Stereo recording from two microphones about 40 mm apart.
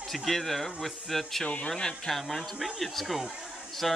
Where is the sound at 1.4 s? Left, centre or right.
Left.